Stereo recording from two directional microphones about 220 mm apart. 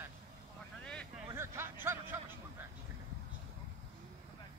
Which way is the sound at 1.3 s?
10° right (ahead or behind).